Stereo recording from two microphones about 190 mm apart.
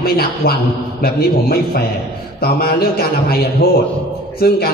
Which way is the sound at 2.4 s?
55° left (ahead or behind).